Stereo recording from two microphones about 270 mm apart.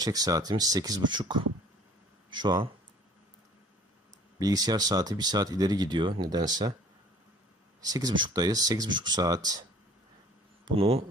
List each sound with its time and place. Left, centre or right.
0.0 s speech: centre
4.4 s speech: centre
7.8 s speech: centre
10.6 s speech: right